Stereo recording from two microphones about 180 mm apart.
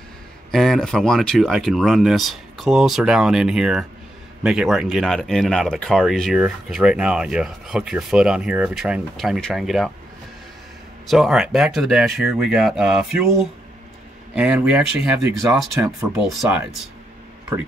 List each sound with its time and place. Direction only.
0.5 s speech: centre (ahead or behind)
11.1 s speech: centre (ahead or behind)
14.3 s speech: 5° right (ahead or behind)